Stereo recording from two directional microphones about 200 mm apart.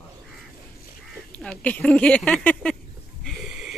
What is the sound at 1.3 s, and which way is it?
Speech, 5° left (ahead or behind).